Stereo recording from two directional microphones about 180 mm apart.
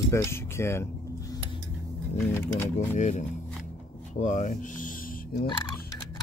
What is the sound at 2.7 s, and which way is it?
Speech, 40° left (ahead or behind).